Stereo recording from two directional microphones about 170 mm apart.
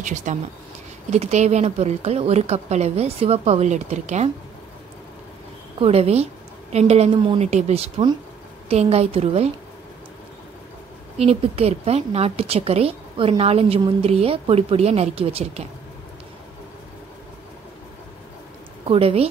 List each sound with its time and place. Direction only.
0.0 s speech: 45° right (ahead or behind)
5.8 s speech: 35° right (ahead or behind)
11.1 s speech: 35° right (ahead or behind)
18.9 s speech: 35° right (ahead or behind)